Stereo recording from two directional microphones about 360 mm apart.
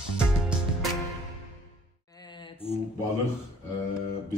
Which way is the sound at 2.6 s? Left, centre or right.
Centre.